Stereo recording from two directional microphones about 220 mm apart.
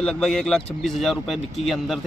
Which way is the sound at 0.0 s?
5° left (ahead or behind).